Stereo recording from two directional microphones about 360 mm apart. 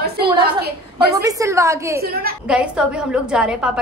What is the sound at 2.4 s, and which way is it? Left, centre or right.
A woman's voice, centre.